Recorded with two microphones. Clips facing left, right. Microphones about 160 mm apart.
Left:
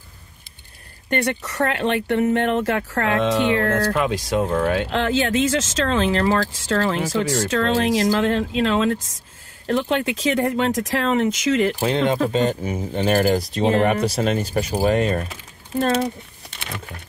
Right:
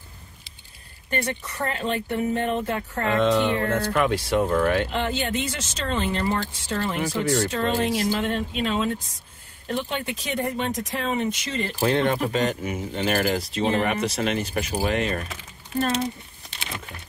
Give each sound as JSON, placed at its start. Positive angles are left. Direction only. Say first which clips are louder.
{"t": 1.1, "sound": "speech", "louder": "left 6 dB", "side_deg": 75}
{"t": 3.9, "sound": "speech", "louder": "left 1 dB", "side_deg": 15}
{"t": 4.8, "sound": "speech", "louder": "left 5 dB", "side_deg": 90}
{"t": 12.3, "sound": "speech", "louder": "left 4 dB", "side_deg": 30}
{"t": 15.9, "sound": "a sound", "louder": "left 5 dB", "side_deg": 60}